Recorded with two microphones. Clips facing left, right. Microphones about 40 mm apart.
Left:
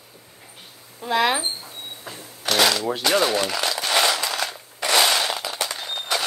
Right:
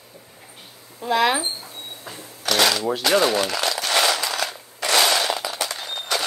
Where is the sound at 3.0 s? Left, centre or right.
Centre.